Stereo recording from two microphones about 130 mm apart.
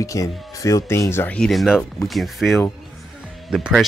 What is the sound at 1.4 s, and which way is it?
Speech, centre (ahead or behind).